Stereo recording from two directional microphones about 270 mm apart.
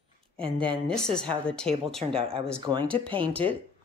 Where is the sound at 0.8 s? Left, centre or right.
Centre.